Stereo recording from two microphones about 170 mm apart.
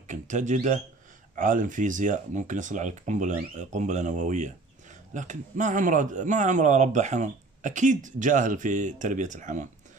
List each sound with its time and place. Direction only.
0.0 s speech: 45° right (ahead or behind)